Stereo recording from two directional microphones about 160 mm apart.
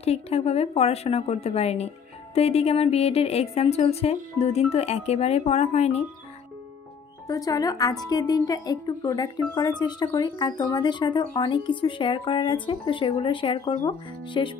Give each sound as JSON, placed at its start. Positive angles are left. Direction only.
{"t": 0.0, "sound": "a woman's voice", "side_deg": 40}
{"t": 7.2, "sound": "a woman's voice", "side_deg": 20}